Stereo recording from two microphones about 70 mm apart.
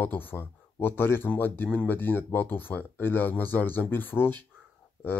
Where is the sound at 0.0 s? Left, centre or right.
Left.